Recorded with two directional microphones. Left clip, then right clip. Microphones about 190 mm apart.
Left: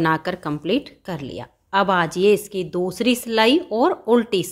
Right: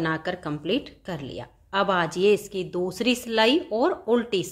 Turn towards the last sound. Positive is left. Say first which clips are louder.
# left 5 dB
turn(degrees=25)  # may be behind; listen again after turning